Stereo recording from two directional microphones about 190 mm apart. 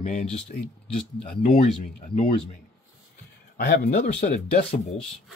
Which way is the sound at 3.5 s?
60° left (ahead or behind).